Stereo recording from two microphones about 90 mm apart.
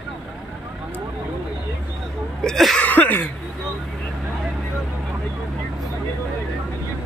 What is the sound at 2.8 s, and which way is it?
Speech, 20° left (ahead or behind).